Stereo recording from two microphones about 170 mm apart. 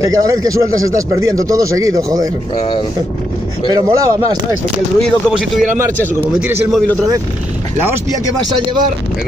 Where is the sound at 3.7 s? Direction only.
20° right (ahead or behind).